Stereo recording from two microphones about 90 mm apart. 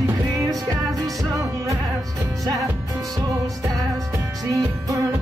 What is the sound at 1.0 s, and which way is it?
Music, 40° right (ahead or behind).